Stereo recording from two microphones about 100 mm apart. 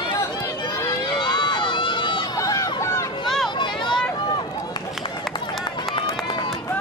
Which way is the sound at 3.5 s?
50° left (ahead or behind).